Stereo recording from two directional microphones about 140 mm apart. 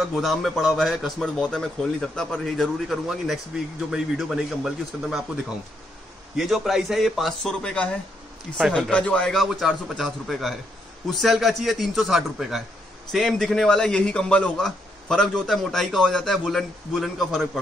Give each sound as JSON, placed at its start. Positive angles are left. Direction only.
{"t": 0.0, "sound": "a man's voice", "side_deg": 0}